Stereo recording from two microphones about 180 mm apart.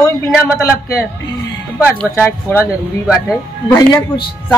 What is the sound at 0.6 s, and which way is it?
A woman's voice, 15° left (ahead or behind).